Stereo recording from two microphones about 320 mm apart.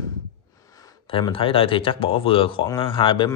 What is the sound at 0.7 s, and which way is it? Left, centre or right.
Speech, centre.